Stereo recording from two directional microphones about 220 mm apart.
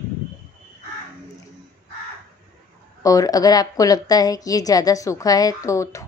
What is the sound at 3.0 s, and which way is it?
A woman's voice, 15° left (ahead or behind).